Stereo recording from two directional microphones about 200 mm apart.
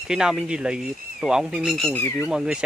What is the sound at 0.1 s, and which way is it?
Speech, 5° right (ahead or behind).